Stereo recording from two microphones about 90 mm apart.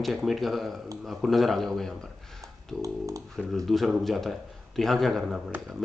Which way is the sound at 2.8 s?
40° right (ahead or behind).